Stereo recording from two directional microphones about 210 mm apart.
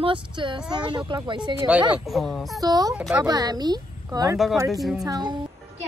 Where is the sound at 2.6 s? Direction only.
15° right (ahead or behind).